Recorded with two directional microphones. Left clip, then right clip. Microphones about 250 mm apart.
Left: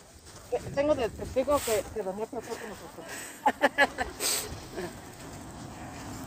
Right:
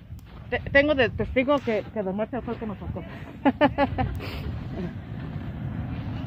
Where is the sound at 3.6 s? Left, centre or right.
Centre.